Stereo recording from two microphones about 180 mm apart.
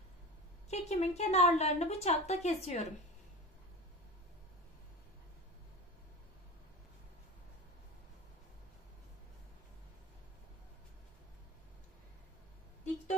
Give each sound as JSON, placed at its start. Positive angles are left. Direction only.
{"t": 0.7, "sound": "speech", "side_deg": 35}